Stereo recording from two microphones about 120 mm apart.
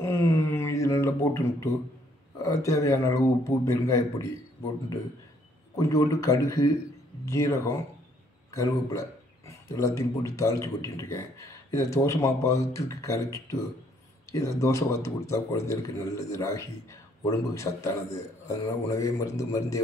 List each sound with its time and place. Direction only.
0.0 s a sound: 20° left (ahead or behind)
2.3 s a man's voice: 25° left (ahead or behind)
5.8 s a man's voice: 25° left (ahead or behind)
18.9 s a man's voice: 30° left (ahead or behind)